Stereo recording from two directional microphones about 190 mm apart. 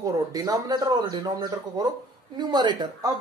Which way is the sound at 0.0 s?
20° right (ahead or behind).